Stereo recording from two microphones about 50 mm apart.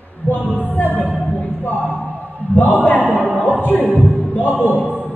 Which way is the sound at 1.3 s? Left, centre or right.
Left.